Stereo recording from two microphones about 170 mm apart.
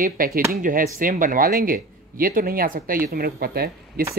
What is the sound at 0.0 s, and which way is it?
Speech, 55° right (ahead or behind).